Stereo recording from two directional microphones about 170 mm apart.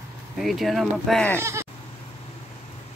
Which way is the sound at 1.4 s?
15° right (ahead or behind).